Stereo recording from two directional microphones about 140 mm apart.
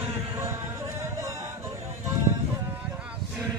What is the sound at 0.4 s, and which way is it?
Music, 20° right (ahead or behind).